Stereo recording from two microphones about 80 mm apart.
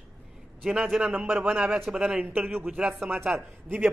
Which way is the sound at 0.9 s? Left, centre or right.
Centre.